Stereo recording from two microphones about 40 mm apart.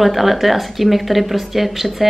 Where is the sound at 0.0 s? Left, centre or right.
Centre.